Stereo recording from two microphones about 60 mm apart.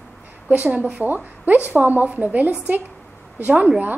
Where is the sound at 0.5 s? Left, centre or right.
Right.